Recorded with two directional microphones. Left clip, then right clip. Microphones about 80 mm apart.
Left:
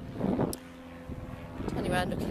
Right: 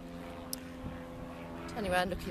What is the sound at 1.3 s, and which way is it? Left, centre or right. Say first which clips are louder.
Vehicle: left 8 dB; centre.